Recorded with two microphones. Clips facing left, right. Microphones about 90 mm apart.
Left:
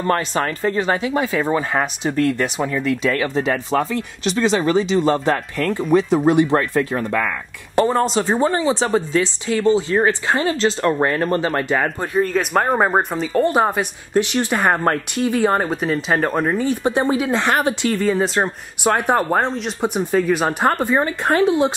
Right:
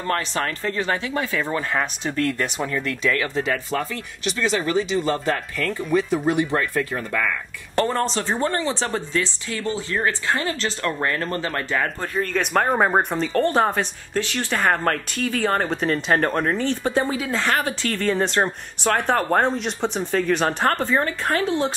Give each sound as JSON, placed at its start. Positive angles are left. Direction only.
{"t": 0.0, "sound": "speech", "side_deg": 20}
{"t": 3.9, "sound": "speech", "side_deg": 30}
{"t": 7.7, "sound": "speech", "side_deg": 10}
{"t": 12.1, "sound": "speech", "side_deg": 5}
{"t": 17.9, "sound": "speech", "side_deg": 5}
{"t": 18.9, "sound": "speech", "side_deg": 15}